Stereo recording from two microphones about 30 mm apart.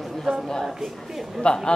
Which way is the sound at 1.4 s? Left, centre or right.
Left.